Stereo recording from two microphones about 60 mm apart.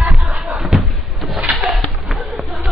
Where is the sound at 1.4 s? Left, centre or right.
Right.